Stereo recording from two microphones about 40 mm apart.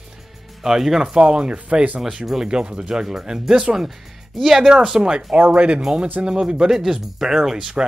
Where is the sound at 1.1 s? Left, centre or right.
Right.